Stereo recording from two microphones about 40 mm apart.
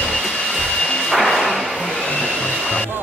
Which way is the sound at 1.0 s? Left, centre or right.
Centre.